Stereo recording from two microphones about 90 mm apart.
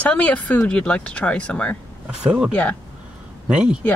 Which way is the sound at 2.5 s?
15° left (ahead or behind).